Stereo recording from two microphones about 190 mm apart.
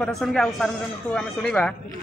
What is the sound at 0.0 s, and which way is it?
Speech, centre (ahead or behind).